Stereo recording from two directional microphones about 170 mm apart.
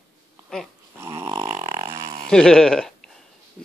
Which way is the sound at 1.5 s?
50° right (ahead or behind).